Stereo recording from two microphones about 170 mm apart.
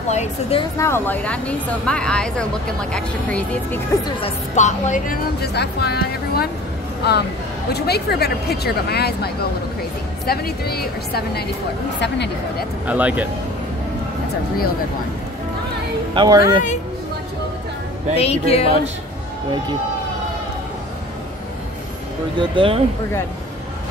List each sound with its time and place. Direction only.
0.1 s speech: 40° left (ahead or behind)
0.7 s speech: 15° left (ahead or behind)
4.2 s speech: 45° left (ahead or behind); by 11.4 s 65° left (ahead or behind)
12.0 s speech: 90° left
12.8 s speech: 10° right (ahead or behind)
16.2 s speech: 25° right (ahead or behind)
18.1 s speech: 35° left (ahead or behind)
22.4 s speech: 30° right (ahead or behind)